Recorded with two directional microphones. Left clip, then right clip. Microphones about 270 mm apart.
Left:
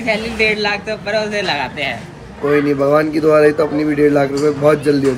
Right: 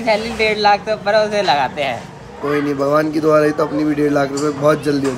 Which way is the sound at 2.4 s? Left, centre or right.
Centre.